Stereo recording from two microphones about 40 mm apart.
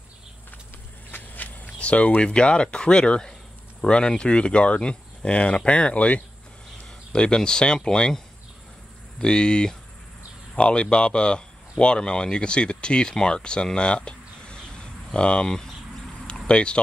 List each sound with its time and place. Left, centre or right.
1.1 s cricket: left
1.8 s speech: left
9.2 s speech: left
13.7 s a sound: left
15.1 s speech: left
16.3 s a sound: left